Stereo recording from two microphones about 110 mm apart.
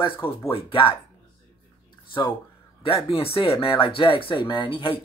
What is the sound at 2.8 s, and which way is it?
Speech, 55° left (ahead or behind).